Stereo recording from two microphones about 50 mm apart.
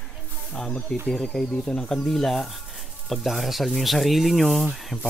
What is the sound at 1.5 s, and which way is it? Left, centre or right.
Speech, left.